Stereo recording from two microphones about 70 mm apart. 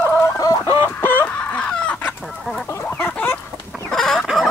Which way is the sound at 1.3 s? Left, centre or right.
Centre.